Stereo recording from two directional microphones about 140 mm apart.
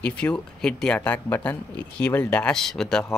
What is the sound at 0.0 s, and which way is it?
Speech, 5° left (ahead or behind).